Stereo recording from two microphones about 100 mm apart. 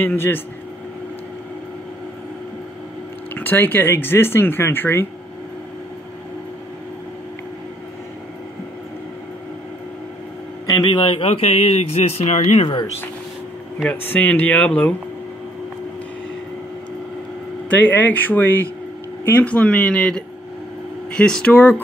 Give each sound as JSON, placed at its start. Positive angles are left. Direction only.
{"t": 0.0, "sound": "speech", "side_deg": 25}
{"t": 3.3, "sound": "speech", "side_deg": 20}
{"t": 10.7, "sound": "a man's voice", "side_deg": 45}
{"t": 11.2, "sound": "speech", "side_deg": 90}
{"t": 13.8, "sound": "speech", "side_deg": 20}
{"t": 17.6, "sound": "speech", "side_deg": 15}